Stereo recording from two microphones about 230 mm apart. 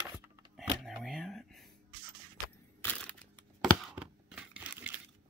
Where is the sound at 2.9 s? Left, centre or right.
Centre.